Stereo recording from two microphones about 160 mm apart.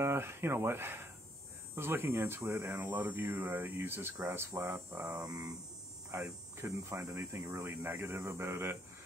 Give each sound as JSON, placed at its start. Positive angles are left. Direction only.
{"t": 0.0, "sound": "speech", "side_deg": -15}